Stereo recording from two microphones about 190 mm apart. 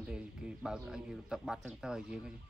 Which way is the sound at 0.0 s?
5° right (ahead or behind).